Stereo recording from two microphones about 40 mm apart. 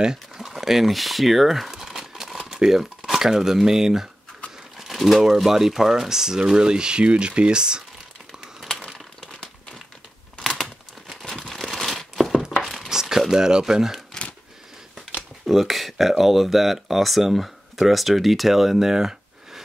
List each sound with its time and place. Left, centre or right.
0.0 s a sound: centre
0.5 s speech: centre
4.7 s crumpling: centre
5.2 s speech: centre
8.7 s a sound: centre
10.4 s crumpling: centre
12.4 s a sound: centre
12.9 s crumpling: centre
13.3 s speech: centre
15.4 s speech: centre